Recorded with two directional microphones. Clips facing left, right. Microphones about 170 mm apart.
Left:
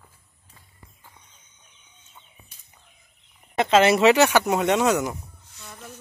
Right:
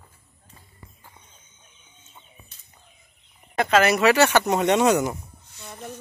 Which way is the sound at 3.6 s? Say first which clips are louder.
Left 2 dB; 25° left (ahead or behind).